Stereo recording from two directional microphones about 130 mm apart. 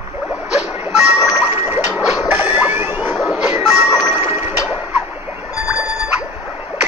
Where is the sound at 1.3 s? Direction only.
15° right (ahead or behind).